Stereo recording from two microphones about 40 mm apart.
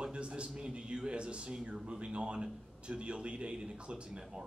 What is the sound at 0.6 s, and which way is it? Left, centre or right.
A man's voice, right.